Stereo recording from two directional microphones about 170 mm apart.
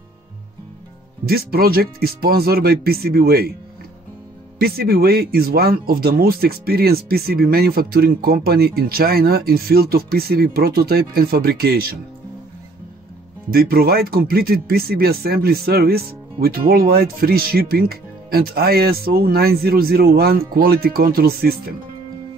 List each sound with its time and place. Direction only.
1.2 s speech: 65° right (ahead or behind)
4.6 s speech: 65° right (ahead or behind)
13.5 s speech: 65° right (ahead or behind)